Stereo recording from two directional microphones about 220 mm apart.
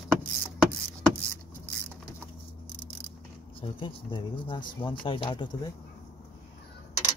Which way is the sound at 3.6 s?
25° left (ahead or behind).